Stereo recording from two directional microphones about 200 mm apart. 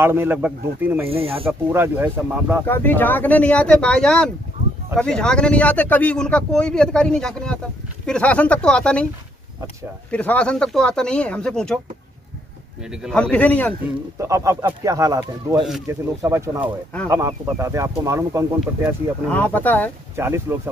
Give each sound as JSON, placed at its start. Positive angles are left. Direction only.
{"t": 0.0, "sound": "speech", "side_deg": -10}
{"t": 1.0, "sound": "speech", "side_deg": -30}
{"t": 1.7, "sound": "speech", "side_deg": -10}
{"t": 2.6, "sound": "speech", "side_deg": 10}
{"t": 10.1, "sound": "speech", "side_deg": 5}
{"t": 12.9, "sound": "speech", "side_deg": 0}
{"t": 14.1, "sound": "speech", "side_deg": -15}
{"t": 19.2, "sound": "speech", "side_deg": 5}
{"t": 20.2, "sound": "speech", "side_deg": -10}